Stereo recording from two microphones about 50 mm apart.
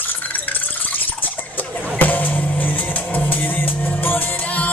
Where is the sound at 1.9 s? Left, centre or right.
Left.